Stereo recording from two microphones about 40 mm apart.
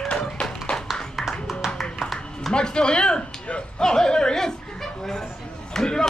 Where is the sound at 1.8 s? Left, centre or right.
Centre.